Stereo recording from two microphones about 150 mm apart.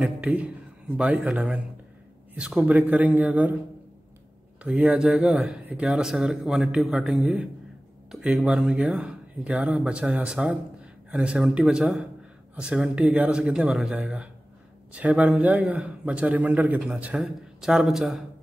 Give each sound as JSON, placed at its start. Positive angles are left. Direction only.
{"t": 0.0, "sound": "a man's voice", "side_deg": -10}
{"t": 4.6, "sound": "a man's voice", "side_deg": -10}